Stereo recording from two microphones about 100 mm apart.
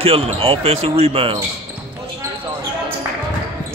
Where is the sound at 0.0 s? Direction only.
75° right (ahead or behind).